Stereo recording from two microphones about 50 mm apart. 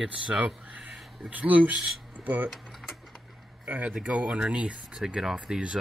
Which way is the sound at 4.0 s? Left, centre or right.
Right.